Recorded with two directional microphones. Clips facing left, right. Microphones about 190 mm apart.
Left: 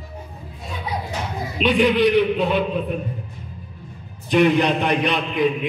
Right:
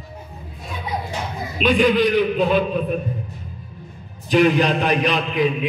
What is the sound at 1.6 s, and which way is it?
A man's voice, 20° left (ahead or behind).